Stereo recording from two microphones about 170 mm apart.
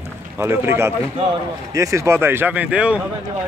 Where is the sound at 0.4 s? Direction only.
15° right (ahead or behind).